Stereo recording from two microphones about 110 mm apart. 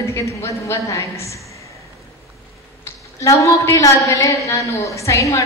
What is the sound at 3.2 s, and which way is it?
A woman's voice, 30° left (ahead or behind).